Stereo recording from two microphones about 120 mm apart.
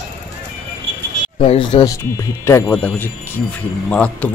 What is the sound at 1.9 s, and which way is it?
Speech, 25° left (ahead or behind).